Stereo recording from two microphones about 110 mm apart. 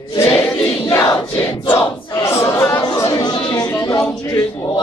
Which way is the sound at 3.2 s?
40° left (ahead or behind).